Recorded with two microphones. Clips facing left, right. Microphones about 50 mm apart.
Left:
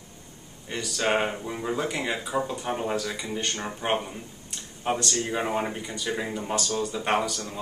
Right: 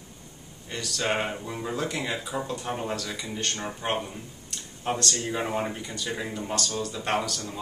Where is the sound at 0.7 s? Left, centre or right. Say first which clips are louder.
Left 3 dB; centre.